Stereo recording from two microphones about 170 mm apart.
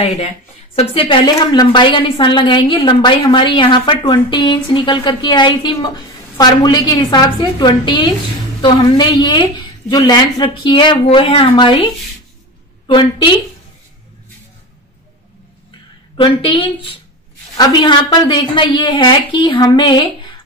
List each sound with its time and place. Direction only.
0.0 s a woman's voice: 35° left (ahead or behind)
16.2 s a woman's voice: 30° left (ahead or behind)